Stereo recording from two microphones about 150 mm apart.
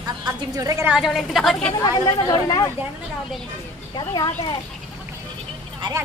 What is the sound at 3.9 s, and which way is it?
Speech, 30° left (ahead or behind).